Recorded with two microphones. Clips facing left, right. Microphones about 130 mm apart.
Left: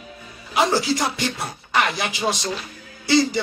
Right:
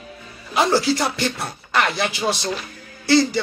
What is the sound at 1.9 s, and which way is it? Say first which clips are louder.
Speech: right 2 dB; 15° left (ahead or behind).